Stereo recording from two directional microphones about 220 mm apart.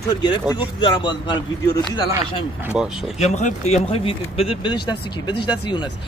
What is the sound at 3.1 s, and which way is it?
Speech, 30° left (ahead or behind).